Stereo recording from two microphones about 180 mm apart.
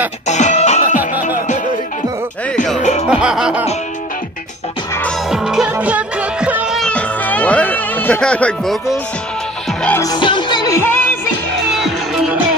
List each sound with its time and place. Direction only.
0.3 s music: 40° left (ahead or behind)
2.5 s music: 5° left (ahead or behind)
2.8 s music: 40° left (ahead or behind)
3.1 s music: 5° right (ahead or behind)
5.3 s music: centre (ahead or behind)
9.8 s music: 10° left (ahead or behind)
10.0 s music: 25° left (ahead or behind)
11.6 s music: centre (ahead or behind)